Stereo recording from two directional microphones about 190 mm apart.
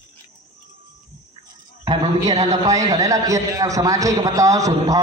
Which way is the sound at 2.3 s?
35° right (ahead or behind).